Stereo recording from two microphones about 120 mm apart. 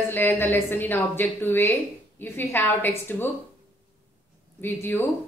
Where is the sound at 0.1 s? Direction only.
20° left (ahead or behind).